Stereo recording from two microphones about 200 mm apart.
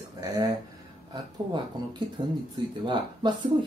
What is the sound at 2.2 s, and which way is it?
Speech, 20° right (ahead or behind).